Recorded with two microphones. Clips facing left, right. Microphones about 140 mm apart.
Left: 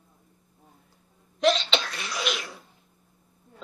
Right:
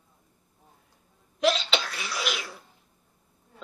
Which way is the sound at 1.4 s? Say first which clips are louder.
Left 2 dB; 5° right (ahead or behind).